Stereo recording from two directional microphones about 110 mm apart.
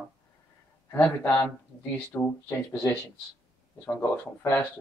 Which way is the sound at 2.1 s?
15° left (ahead or behind).